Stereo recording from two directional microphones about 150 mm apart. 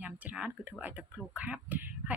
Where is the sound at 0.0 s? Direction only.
10° right (ahead or behind).